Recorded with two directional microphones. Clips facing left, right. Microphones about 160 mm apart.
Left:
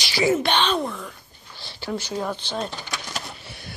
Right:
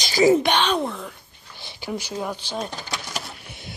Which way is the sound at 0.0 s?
45° right (ahead or behind).